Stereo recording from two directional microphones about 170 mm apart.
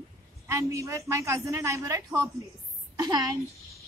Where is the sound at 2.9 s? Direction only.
25° right (ahead or behind).